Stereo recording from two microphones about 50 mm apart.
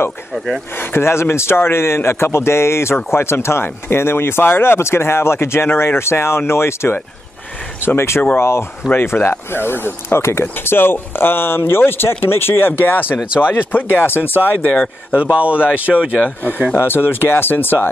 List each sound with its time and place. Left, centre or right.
0.7 s speech: left
10.4 s speech: left
14.7 s speech: left
15.1 s speech: right
16.7 s speech: left